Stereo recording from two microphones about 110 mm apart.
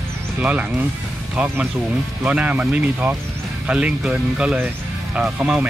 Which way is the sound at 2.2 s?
15° right (ahead or behind).